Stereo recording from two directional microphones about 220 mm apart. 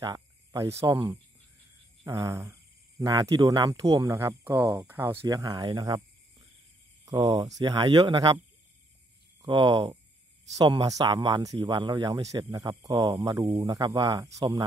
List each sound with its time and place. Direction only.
0.0 s speech: 15° right (ahead or behind)
7.1 s speech: 15° right (ahead or behind)
9.4 s speech: 20° right (ahead or behind)